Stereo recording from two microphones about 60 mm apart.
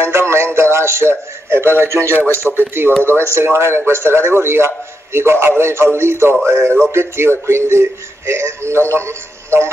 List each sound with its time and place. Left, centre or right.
0.0 s a sound: right
0.6 s a man's voice: right
2.4 s speech: centre
3.0 s a man's voice: right